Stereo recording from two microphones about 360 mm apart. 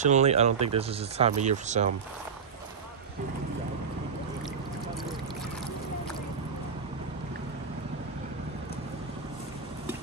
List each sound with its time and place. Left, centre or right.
0.0 s speech: centre